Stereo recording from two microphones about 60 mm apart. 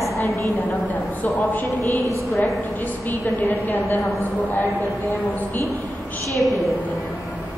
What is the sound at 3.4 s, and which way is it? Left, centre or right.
Speech, left.